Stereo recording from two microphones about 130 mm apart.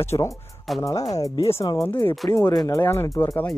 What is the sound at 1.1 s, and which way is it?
Speech, 25° left (ahead or behind).